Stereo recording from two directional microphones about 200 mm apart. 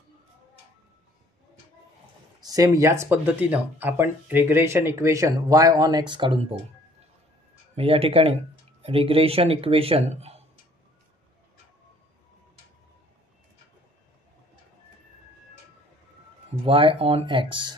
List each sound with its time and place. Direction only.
2.4 s speech: 15° right (ahead or behind)
7.7 s speech: 30° right (ahead or behind)
16.6 s speech: 25° right (ahead or behind)